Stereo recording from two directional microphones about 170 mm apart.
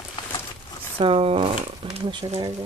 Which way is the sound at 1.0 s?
35° right (ahead or behind).